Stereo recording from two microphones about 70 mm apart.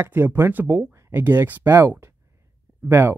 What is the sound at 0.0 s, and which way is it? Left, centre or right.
Speech, right.